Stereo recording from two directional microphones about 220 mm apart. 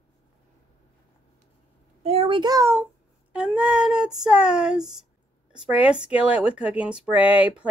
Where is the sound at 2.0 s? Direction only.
25° right (ahead or behind).